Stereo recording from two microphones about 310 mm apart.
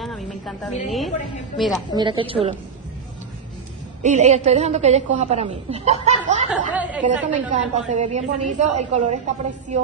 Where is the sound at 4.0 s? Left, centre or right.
Right.